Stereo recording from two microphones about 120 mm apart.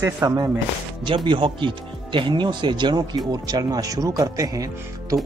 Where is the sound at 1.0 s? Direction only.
40° right (ahead or behind).